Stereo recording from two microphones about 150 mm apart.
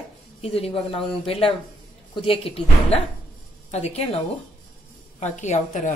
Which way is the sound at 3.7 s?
45° left (ahead or behind).